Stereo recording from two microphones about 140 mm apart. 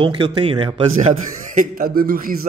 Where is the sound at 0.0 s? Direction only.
40° right (ahead or behind).